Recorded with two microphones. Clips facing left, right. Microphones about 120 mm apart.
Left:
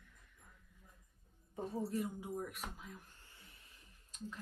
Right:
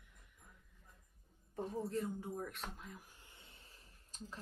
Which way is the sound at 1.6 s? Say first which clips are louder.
Left 1 dB; 10° left (ahead or behind).